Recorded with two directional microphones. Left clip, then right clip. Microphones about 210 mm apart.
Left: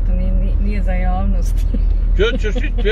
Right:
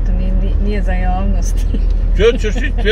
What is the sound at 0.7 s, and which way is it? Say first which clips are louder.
Speech: right 3 dB; 35° left (ahead or behind).